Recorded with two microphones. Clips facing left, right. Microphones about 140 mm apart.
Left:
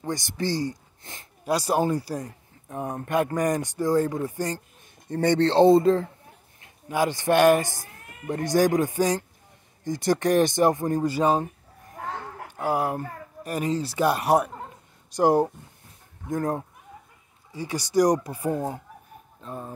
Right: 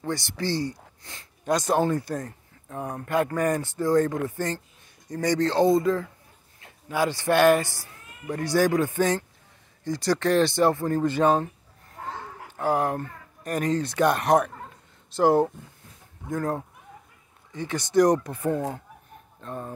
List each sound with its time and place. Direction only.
1.4 s speech: 10° left (ahead or behind)
5.1 s speech: 30° left (ahead or behind)
7.8 s cat: 55° left (ahead or behind)
8.3 s speech: 20° left (ahead or behind)
12.4 s speech: 10° left (ahead or behind)
17.5 s speech: 10° left (ahead or behind)